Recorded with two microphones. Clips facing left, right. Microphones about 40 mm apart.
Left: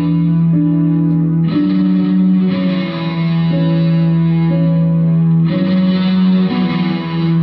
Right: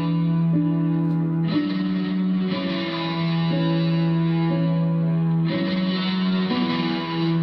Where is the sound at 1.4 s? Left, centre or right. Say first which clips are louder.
Left 9 dB; left.